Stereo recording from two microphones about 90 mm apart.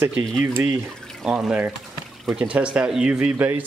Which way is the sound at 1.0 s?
5° left (ahead or behind).